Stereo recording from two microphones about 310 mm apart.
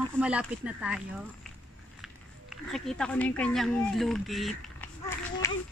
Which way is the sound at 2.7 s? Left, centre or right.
Centre.